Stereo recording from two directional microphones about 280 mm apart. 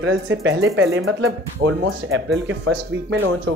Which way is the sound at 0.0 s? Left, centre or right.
Right.